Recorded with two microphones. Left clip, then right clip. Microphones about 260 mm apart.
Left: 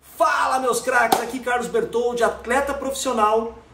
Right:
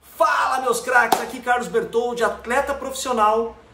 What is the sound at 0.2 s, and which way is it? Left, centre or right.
Speech, centre.